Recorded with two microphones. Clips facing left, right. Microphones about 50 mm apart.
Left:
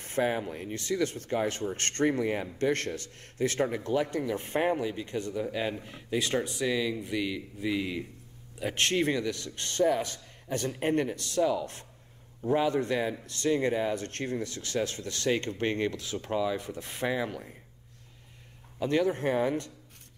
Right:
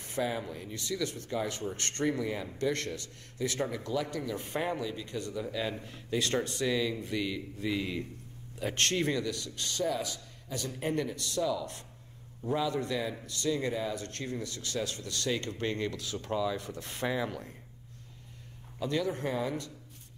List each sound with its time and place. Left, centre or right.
0.0 s speech: left
9.4 s speech: left; by 17.6 s centre
18.9 s speech: left